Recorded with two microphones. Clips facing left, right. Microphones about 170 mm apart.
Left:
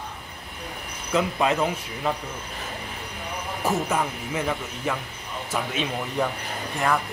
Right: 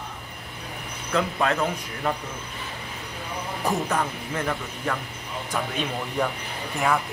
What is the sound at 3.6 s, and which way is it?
Speech, 5° left (ahead or behind).